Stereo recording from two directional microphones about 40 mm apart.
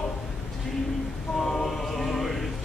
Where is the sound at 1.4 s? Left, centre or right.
Centre.